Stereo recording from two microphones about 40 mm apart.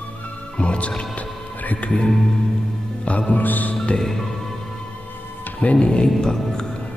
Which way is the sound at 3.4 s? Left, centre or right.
Left.